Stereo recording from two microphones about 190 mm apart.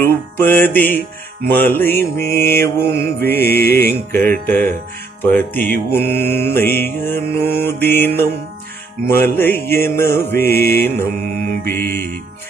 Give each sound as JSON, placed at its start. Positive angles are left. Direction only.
{"t": 0.0, "sound": "music", "side_deg": 10}
{"t": 3.5, "sound": "music", "side_deg": 55}
{"t": 4.5, "sound": "music", "side_deg": 10}
{"t": 10.6, "sound": "music", "side_deg": 55}
{"t": 11.7, "sound": "music", "side_deg": 10}